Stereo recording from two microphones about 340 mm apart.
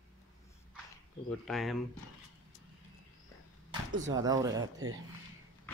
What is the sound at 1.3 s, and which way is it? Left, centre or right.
Speech, centre.